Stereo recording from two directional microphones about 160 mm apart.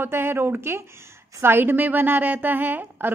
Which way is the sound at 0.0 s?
15° right (ahead or behind).